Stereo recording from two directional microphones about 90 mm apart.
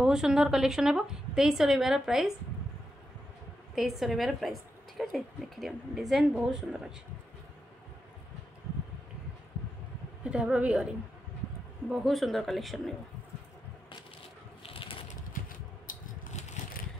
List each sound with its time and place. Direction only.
0.0 s a woman's voice: 5° right (ahead or behind)
3.7 s a woman's voice: centre (ahead or behind)
10.3 s a woman's voice: 10° right (ahead or behind)
11.9 s a woman's voice: centre (ahead or behind)
14.6 s crushing: 85° left